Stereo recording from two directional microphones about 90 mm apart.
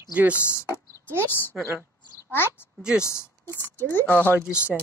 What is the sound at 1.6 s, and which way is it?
Speech, 25° left (ahead or behind).